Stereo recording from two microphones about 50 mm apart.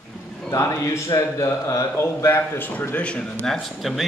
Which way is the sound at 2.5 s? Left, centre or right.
Left.